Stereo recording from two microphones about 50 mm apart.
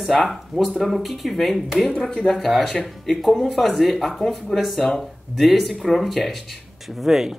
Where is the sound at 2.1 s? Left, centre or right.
Centre.